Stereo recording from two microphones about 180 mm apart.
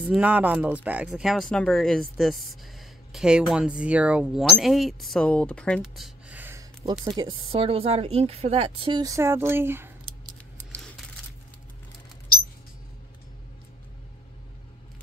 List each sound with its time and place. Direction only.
0.0 s speech: 10° right (ahead or behind)
6.9 s speech: 25° right (ahead or behind)
10.0 s a sound: 25° right (ahead or behind)